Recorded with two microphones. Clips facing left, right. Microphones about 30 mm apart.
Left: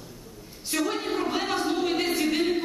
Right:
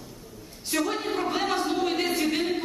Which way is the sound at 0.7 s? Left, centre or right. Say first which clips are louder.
Even; centre.